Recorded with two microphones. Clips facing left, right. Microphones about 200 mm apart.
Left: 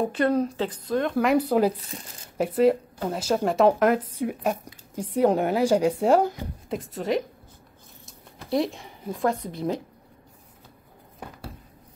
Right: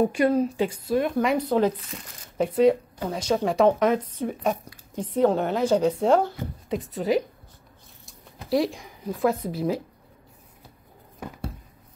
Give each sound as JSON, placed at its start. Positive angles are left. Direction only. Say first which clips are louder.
{"t": 0.1, "sound": "a woman's voice", "louder": "right 1 dB", "side_deg": -10}
{"t": 1.1, "sound": "a woman's voice", "louder": "left 1 dB", "side_deg": 5}
{"t": 1.8, "sound": "speech", "louder": "even", "side_deg": 35}
{"t": 2.3, "sound": "a woman's voice", "louder": "right 1 dB", "side_deg": 5}
{"t": 6.7, "sound": "speech", "louder": "right 2 dB", "side_deg": 0}
{"t": 8.5, "sound": "speech", "louder": "right 2 dB", "side_deg": 0}